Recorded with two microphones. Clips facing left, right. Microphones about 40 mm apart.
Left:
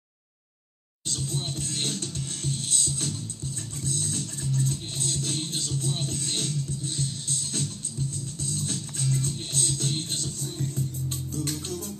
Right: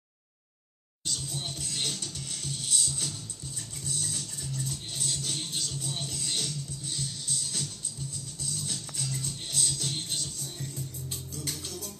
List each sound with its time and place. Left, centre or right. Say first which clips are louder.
1.0 s music: left 4 dB; left
8.5 s music: left 4 dB; left